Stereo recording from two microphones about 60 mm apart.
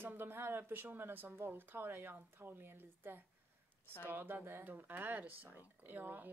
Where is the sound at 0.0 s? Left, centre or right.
Right.